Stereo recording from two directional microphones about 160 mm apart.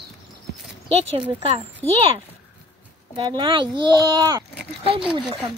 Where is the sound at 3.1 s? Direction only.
30° right (ahead or behind).